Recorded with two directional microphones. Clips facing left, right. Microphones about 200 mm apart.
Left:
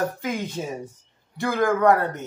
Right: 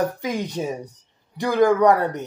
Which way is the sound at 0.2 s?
15° right (ahead or behind).